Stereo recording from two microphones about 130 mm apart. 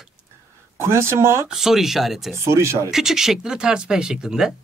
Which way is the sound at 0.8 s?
20° right (ahead or behind).